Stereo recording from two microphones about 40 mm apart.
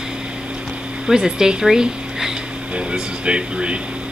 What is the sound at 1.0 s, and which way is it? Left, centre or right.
Speech, centre.